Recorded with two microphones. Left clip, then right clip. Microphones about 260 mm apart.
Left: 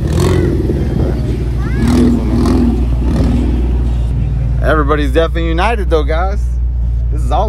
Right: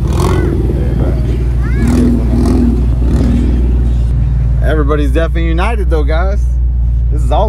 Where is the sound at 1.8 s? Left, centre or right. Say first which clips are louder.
Left 1 dB; centre.